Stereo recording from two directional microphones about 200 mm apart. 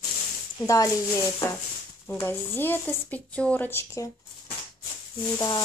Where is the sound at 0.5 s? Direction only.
15° left (ahead or behind).